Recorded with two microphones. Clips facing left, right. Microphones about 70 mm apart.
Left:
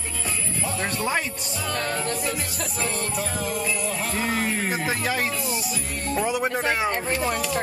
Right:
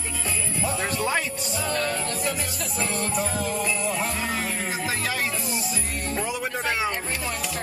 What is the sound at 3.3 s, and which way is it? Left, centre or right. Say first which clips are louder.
Jingle bell: even; centre.